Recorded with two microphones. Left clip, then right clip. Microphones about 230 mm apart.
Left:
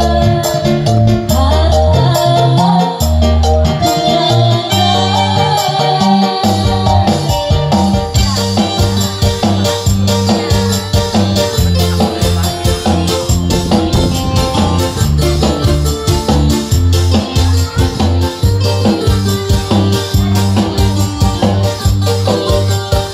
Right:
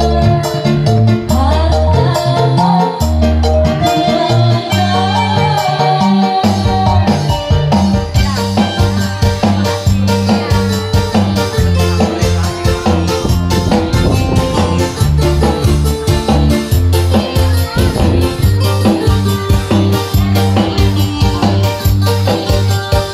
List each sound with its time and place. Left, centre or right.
0.0 s music: left
2.2 s music: left
9.4 s music: left